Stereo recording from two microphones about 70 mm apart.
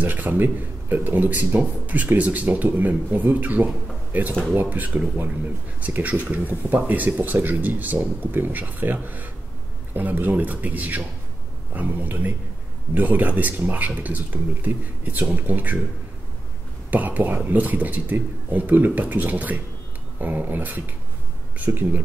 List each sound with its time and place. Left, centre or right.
0.0 s speech: right
16.9 s speech: right